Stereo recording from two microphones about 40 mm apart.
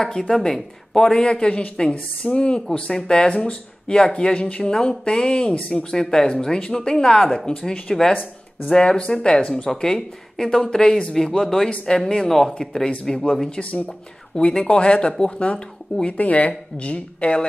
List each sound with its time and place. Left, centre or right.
0.3 s speech: centre
1.2 s speech: left
3.8 s speech: centre
13.6 s speech: left
13.8 s speech: left
16.2 s speech: left